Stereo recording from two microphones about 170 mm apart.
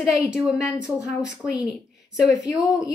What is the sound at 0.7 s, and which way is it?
Speech, 15° left (ahead or behind).